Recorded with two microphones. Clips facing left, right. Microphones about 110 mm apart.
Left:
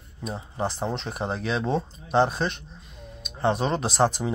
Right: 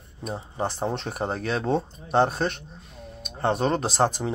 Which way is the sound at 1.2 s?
45° right (ahead or behind).